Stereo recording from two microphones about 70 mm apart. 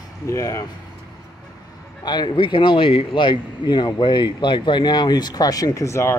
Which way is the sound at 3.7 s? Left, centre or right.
Left.